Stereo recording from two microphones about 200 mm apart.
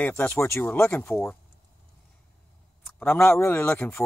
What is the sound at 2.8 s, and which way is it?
Speech, 10° left (ahead or behind).